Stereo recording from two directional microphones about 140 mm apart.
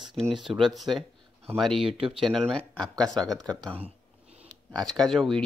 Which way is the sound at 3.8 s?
45° right (ahead or behind).